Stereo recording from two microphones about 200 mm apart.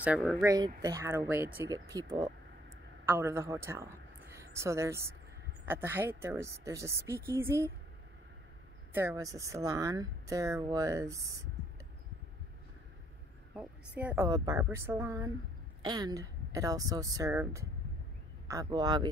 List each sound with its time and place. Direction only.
0.0 s speech: 5° right (ahead or behind)
8.9 s speech: 15° right (ahead or behind)
13.6 s speech: 10° right (ahead or behind)